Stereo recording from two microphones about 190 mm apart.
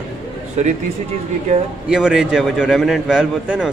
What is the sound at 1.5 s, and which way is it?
Speech, 35° right (ahead or behind).